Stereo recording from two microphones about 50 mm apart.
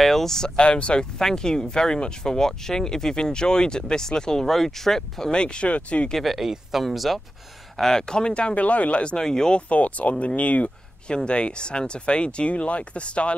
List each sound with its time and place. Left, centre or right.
0.0 s a sound: centre
0.6 s speech: left
6.2 s speech: centre
7.7 s speech: centre
9.7 s speech: left
11.1 s speech: centre